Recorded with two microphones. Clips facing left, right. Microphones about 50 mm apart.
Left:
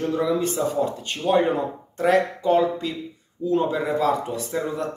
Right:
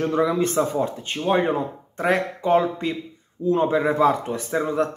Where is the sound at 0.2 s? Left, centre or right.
Right.